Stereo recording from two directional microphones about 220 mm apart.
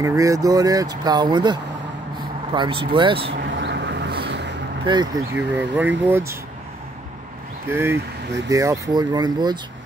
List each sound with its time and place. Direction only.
0.0 s speech: 15° right (ahead or behind)
3.4 s a sound: 55° right (ahead or behind)
4.8 s speech: 20° right (ahead or behind)
5.8 s speech: 10° right (ahead or behind)
7.6 s speech: 10° right (ahead or behind)